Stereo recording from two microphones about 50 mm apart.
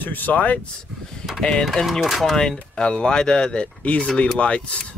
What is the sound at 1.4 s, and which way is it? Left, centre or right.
Speech, centre.